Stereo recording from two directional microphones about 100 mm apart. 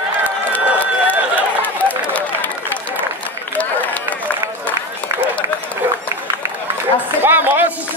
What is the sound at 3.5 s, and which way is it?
Run, 15° left (ahead or behind).